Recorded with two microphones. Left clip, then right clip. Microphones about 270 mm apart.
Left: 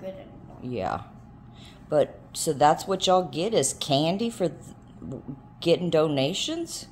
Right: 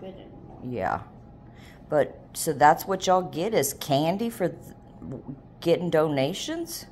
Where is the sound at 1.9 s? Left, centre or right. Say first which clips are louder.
Left 1 dB; centre.